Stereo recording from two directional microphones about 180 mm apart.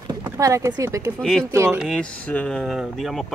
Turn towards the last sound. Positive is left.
turn(degrees=0)  # may be behind; listen again after turning